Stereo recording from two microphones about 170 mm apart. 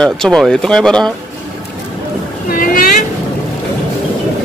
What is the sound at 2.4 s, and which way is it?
Boat, 55° left (ahead or behind).